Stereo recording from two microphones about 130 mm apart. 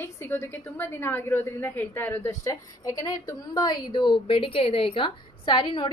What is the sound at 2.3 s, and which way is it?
A woman's voice, 25° left (ahead or behind).